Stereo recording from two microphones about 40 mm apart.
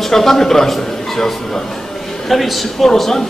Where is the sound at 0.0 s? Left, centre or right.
Centre.